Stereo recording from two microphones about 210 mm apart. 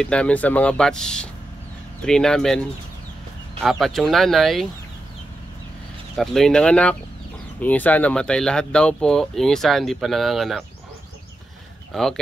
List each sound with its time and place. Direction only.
0.0 s speech: 5° left (ahead or behind)
3.6 s speech: centre (ahead or behind)
6.1 s speech: centre (ahead or behind)
11.9 s speech: centre (ahead or behind)